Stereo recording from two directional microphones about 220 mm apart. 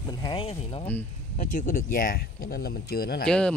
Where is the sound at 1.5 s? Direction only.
40° left (ahead or behind).